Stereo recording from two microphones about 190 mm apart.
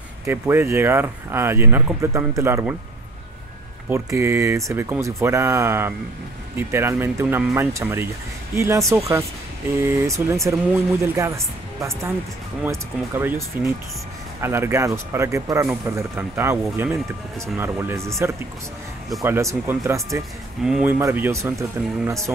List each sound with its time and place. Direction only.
0.2 s speech: 10° right (ahead or behind)
3.9 s speech: 15° right (ahead or behind)
10.0 s speech: 15° right (ahead or behind)
19.2 s speech: 10° right (ahead or behind)
20.6 s speech: 5° right (ahead or behind)